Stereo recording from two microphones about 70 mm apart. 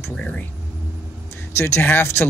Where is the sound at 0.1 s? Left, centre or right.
Centre.